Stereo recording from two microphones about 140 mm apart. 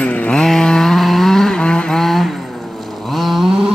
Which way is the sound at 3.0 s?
Centre (ahead or behind).